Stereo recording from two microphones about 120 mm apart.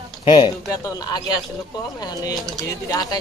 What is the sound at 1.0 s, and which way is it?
Speech, 35° left (ahead or behind).